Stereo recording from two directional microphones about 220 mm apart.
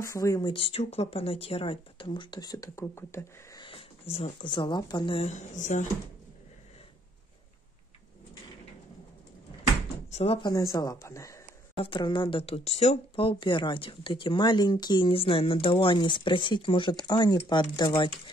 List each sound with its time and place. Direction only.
0.0 s speech: 15° left (ahead or behind)
3.6 s speech: 25° left (ahead or behind)
10.1 s speech: 25° left (ahead or behind)